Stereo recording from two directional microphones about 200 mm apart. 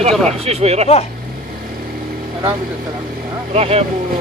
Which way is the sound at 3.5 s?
30° right (ahead or behind).